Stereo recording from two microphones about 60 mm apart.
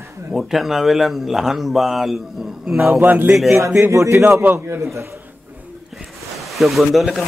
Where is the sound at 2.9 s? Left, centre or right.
Right.